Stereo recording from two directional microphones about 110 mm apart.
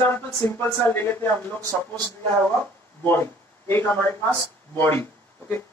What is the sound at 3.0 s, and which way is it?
Speech, 20° left (ahead or behind).